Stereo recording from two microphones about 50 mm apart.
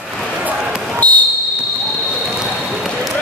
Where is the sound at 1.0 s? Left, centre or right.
Left.